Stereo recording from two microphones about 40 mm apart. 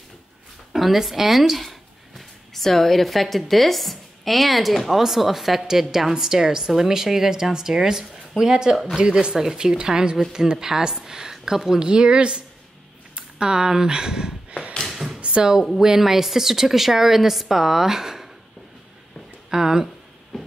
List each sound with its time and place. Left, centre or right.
0.7 s a woman's voice: centre
9.0 s a woman's voice: right
11.8 s speech: right
14.9 s a sound: centre
15.1 s a sound: right
15.8 s a woman's voice: centre
19.5 s a woman's voice: centre